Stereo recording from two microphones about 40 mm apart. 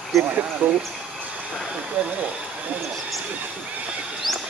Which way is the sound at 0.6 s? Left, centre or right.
Right.